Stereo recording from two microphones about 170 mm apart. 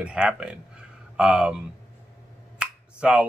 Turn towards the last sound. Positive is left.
turn(degrees=-5)  # may be behind; listen again after turning